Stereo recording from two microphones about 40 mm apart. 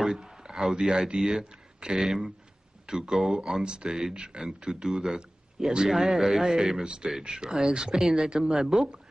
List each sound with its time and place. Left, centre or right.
0.0 s speech: centre
6.8 s speech: right
7.1 s speech: centre